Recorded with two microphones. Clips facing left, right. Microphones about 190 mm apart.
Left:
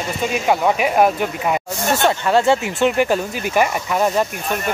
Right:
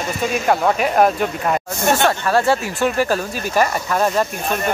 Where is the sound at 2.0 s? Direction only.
20° left (ahead or behind).